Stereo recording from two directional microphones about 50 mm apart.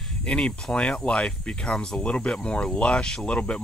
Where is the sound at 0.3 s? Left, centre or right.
Left.